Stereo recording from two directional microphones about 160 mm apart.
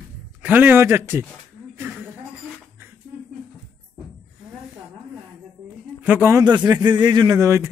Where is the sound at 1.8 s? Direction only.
10° right (ahead or behind).